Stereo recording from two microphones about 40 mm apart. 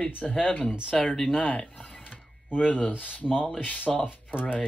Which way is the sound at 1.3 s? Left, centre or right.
Left.